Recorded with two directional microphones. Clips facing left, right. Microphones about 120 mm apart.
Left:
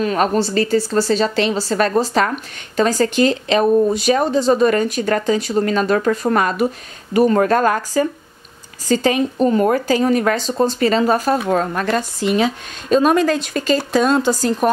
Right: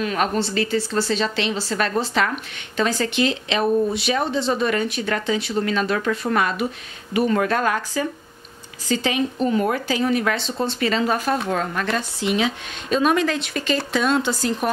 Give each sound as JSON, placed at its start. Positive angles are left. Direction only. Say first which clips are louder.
{"t": 0.0, "sound": "speech", "louder": "left 5 dB", "side_deg": 40}